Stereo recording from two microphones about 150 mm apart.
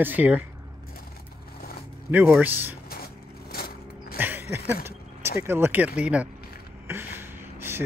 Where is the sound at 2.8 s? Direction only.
90° left.